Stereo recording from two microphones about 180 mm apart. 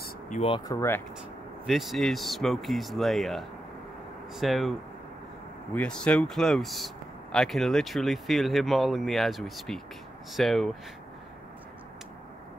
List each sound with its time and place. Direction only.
0.3 s speech: 45° left (ahead or behind)
0.7 s speech: 15° left (ahead or behind)
1.7 s speech: centre (ahead or behind)